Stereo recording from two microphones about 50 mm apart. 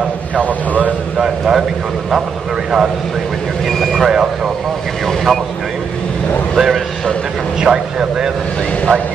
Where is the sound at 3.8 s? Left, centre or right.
Centre.